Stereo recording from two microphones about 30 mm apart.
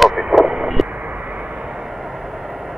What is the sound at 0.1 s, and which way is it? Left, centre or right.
Vehicle, right.